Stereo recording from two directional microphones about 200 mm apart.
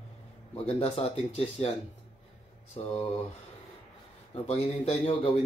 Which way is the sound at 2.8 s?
30° left (ahead or behind).